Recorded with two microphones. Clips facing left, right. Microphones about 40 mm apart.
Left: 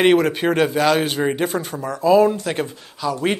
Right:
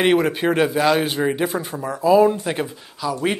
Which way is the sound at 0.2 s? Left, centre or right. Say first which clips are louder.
Left 1 dB; centre.